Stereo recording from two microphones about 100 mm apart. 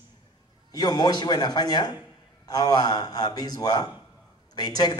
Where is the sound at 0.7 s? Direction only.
40° left (ahead or behind).